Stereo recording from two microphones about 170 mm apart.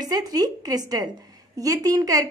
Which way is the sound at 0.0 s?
25° right (ahead or behind).